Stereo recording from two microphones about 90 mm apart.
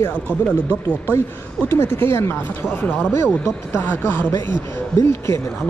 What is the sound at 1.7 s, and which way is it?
Speech, 25° left (ahead or behind).